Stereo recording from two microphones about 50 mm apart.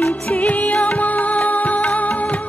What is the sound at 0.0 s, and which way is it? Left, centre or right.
Music, left.